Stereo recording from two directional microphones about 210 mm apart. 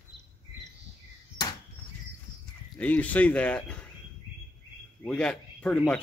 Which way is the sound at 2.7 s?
5° left (ahead or behind).